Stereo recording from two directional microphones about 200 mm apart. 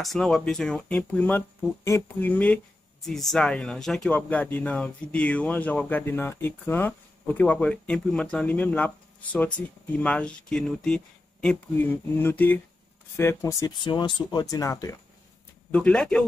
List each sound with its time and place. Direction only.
0.0 s speech: centre (ahead or behind)
15.7 s speech: 5° left (ahead or behind)